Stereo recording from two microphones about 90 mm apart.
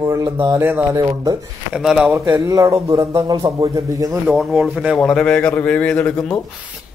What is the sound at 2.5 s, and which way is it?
Speech, 40° right (ahead or behind).